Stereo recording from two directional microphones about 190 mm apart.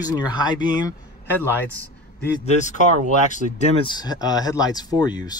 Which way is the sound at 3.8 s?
25° left (ahead or behind).